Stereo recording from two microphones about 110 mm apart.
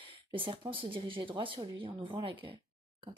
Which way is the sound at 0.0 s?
50° right (ahead or behind).